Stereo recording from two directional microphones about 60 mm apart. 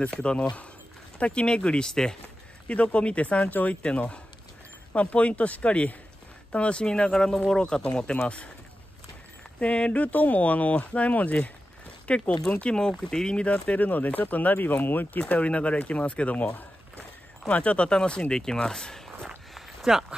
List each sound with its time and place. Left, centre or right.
0.0 s speech: centre
9.6 s speech: centre
17.5 s speech: left
19.0 s walk: centre